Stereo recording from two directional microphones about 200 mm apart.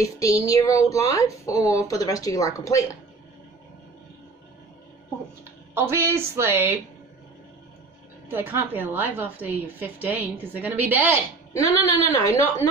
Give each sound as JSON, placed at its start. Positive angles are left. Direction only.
{"t": 0.0, "sound": "speech", "side_deg": 15}
{"t": 5.8, "sound": "a woman's voice", "side_deg": -10}
{"t": 8.3, "sound": "a woman's voice", "side_deg": -10}
{"t": 11.5, "sound": "speech", "side_deg": 15}